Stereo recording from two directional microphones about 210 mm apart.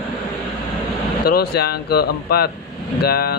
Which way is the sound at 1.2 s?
45° left (ahead or behind).